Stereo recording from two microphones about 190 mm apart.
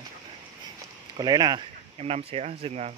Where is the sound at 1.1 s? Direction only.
20° right (ahead or behind).